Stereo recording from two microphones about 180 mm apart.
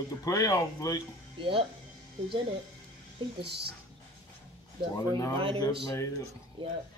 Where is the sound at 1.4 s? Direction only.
30° right (ahead or behind).